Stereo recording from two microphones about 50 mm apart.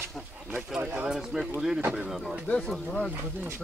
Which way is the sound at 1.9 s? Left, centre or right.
Centre.